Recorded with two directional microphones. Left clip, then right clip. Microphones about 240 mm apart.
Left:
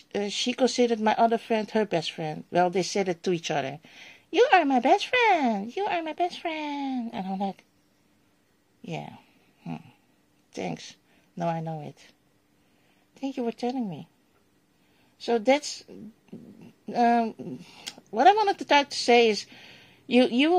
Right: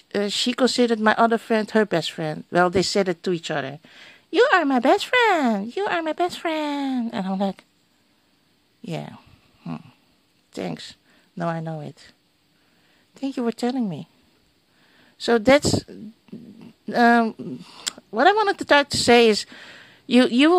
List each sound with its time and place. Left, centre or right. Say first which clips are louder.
0.1 s speech: right 5 dB; right
8.8 s a sound: right 4 dB; right
10.5 s speech: right 3 dB; right
13.1 s speech: right 5 dB; right
15.1 s speech: right 6 dB; right